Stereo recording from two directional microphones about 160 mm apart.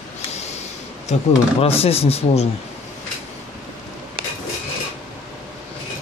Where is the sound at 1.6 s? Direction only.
40° left (ahead or behind).